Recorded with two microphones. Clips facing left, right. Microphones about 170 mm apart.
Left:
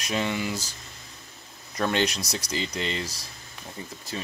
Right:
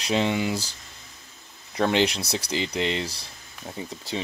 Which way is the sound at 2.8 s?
85° right.